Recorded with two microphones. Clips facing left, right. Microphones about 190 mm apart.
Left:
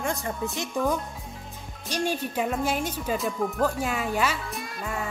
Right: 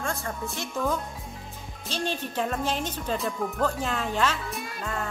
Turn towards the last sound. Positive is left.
turn(degrees=5)  # may be behind; listen again after turning